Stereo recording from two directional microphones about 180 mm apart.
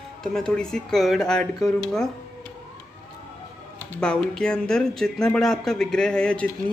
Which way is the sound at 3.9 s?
5° left (ahead or behind).